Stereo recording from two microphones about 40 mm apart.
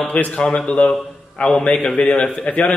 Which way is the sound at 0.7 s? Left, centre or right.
Left.